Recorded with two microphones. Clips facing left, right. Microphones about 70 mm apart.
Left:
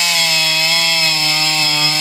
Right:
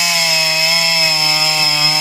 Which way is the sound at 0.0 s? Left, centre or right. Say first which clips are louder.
Right 1 dB; centre.